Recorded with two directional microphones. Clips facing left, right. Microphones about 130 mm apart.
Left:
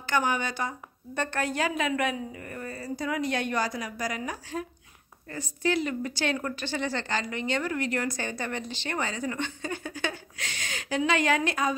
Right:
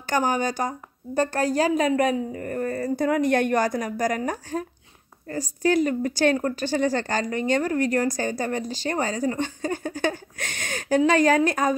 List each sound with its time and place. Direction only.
0.0 s a woman's voice: 40° right (ahead or behind)